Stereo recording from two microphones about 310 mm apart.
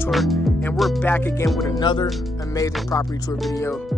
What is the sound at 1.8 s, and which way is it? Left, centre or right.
Speech, centre.